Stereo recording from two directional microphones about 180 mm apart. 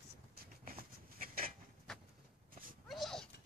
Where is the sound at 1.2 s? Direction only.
50° right (ahead or behind).